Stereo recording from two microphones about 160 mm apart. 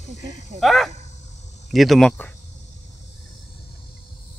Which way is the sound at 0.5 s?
Centre (ahead or behind).